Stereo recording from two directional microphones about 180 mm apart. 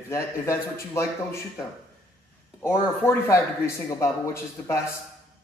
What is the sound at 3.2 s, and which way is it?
A man's voice, 15° left (ahead or behind).